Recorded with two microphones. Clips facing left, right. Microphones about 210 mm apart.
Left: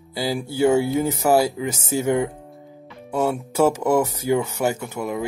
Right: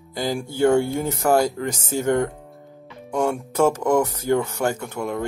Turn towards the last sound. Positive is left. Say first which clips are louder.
# even
turn(degrees=5)  # may be behind; listen again after turning